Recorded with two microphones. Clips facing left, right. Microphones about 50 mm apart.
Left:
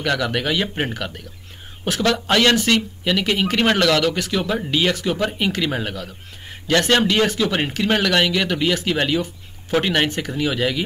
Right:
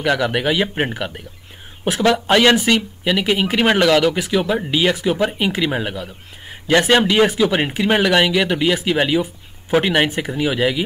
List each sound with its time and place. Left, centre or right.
0.0 s speech: centre